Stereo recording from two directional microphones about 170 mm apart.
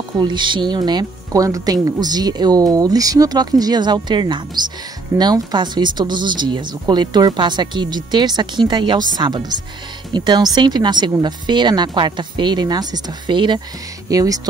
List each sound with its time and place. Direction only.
0.2 s speech: 25° right (ahead or behind)